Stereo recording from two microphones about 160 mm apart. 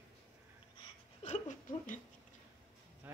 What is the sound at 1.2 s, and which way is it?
Speech, 45° left (ahead or behind).